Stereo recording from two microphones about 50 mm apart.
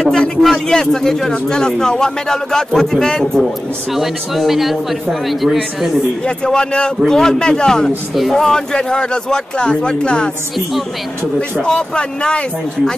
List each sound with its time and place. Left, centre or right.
0.4 s speech: centre
3.9 s speech: centre
6.2 s speech: centre
11.6 s speech: centre